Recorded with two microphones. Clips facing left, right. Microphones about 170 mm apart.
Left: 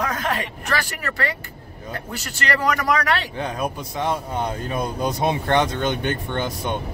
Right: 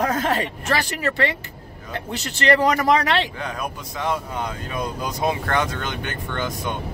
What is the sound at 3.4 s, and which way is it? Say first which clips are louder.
Speech: left 3 dB; 25° left (ahead or behind).